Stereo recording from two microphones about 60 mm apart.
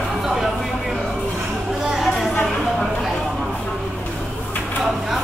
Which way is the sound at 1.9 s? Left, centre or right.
Centre.